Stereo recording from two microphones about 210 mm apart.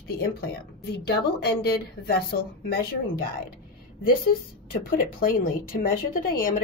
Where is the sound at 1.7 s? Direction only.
45° left (ahead or behind).